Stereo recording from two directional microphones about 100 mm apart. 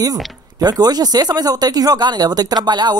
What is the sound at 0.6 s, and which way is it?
Speech, 40° right (ahead or behind).